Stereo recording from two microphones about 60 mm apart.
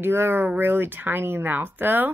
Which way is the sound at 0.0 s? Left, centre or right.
Right.